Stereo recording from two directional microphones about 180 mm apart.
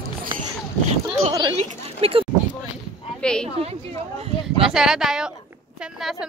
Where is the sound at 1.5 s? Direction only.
30° right (ahead or behind).